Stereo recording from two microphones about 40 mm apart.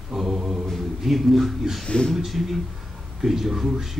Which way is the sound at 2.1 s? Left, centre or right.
Centre.